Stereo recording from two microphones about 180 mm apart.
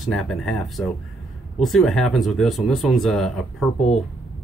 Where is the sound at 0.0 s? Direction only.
Centre (ahead or behind).